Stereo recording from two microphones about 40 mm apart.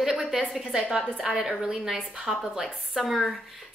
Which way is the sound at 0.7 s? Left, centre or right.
Centre.